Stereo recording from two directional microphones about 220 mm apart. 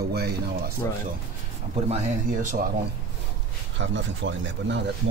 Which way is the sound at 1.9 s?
35° right (ahead or behind).